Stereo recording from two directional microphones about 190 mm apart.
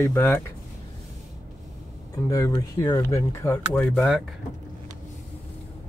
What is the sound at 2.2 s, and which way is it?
Speech, 15° left (ahead or behind).